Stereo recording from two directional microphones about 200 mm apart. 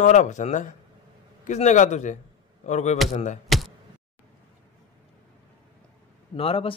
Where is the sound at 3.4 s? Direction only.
Centre (ahead or behind).